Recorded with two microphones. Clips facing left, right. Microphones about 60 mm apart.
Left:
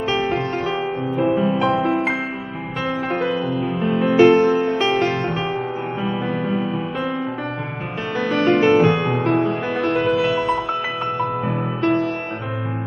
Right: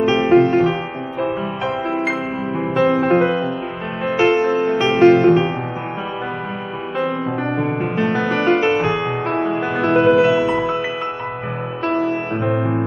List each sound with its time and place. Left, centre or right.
0.0 s music: centre
2.8 s music: right
4.2 s music: centre
8.1 s music: centre